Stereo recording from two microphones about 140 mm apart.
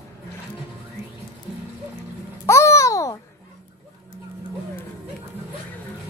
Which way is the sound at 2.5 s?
20° left (ahead or behind).